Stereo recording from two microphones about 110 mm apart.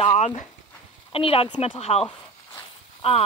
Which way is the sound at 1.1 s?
55° left (ahead or behind).